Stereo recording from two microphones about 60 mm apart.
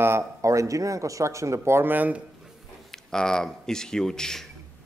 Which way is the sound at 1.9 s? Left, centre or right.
Right.